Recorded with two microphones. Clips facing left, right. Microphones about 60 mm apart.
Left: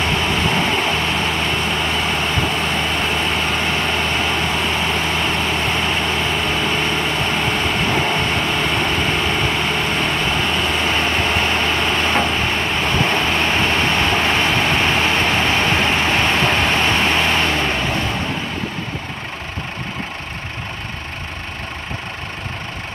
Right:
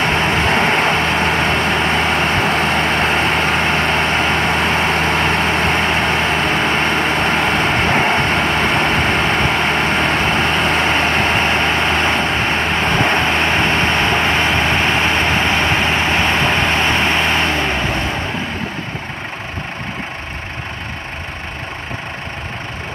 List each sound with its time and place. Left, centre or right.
0.0 s vehicle: right
11.4 s vehicle: right
12.3 s vehicle: right
13.6 s vehicle: right; by 16.8 s centre
16.8 s vehicle: right